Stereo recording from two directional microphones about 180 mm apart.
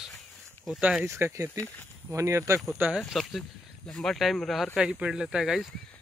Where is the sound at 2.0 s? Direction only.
15° right (ahead or behind).